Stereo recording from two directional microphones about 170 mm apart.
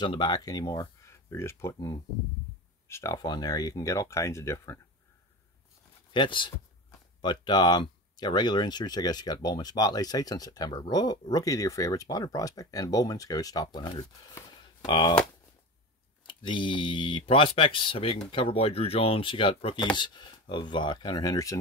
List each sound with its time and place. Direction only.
0.0 s speech: 25° left (ahead or behind)
6.1 s speech: 30° left (ahead or behind)
16.3 s speech: 30° left (ahead or behind)